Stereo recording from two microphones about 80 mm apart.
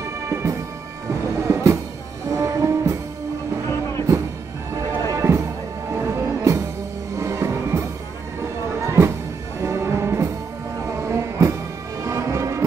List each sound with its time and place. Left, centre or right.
0.3 s music: right
5.1 s music: right
8.8 s music: right